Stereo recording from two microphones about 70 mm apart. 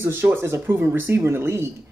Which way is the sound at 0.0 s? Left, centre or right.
Right.